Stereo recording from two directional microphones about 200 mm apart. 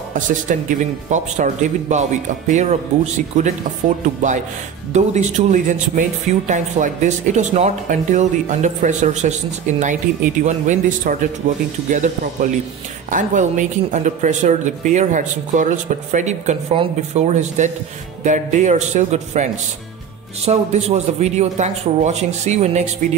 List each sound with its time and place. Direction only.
0.1 s speech: 40° right (ahead or behind)